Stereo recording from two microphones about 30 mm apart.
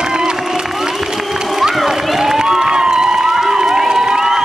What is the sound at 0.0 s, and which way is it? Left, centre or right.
Crowd, right.